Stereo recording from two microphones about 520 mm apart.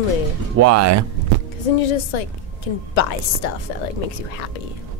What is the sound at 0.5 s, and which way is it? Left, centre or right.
Speech, right.